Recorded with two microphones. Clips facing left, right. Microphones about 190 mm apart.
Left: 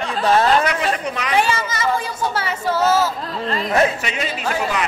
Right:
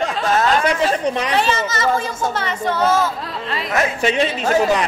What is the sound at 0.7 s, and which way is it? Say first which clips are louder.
Speech: right 4 dB; 30° right (ahead or behind).